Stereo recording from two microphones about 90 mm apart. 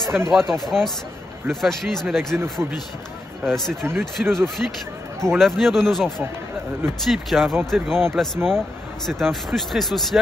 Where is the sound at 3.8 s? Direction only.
25° right (ahead or behind).